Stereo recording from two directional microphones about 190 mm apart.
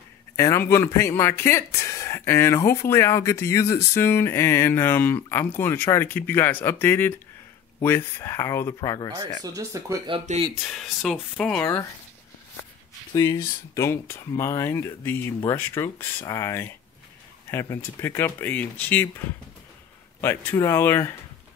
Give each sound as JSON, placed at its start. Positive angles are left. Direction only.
{"t": 0.4, "sound": "speech", "side_deg": 15}
{"t": 9.4, "sound": "speech", "side_deg": -15}
{"t": 10.1, "sound": "speech", "side_deg": -35}
{"t": 10.5, "sound": "speech", "side_deg": 0}
{"t": 13.1, "sound": "speech", "side_deg": 15}